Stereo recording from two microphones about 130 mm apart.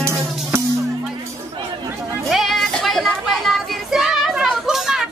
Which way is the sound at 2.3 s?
Centre (ahead or behind).